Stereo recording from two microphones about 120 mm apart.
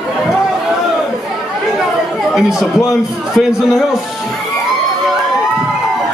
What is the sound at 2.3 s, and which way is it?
A man's voice, 5° right (ahead or behind).